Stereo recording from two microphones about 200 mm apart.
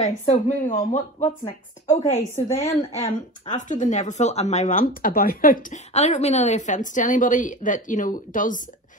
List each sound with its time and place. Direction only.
0.0 s a woman's voice: 40° left (ahead or behind)